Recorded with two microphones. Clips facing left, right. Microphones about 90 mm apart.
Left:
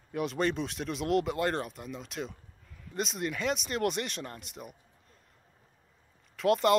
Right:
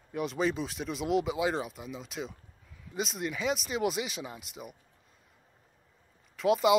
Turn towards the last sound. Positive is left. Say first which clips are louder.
# even
turn(degrees=0)  # may be behind; listen again after turning